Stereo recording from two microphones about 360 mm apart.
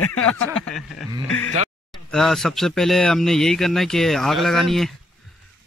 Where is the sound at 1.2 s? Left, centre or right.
Left.